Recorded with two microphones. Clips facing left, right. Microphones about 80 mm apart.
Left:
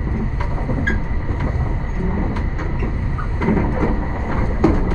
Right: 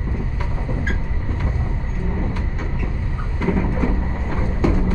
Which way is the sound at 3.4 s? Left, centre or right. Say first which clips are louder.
Left 3 dB; left.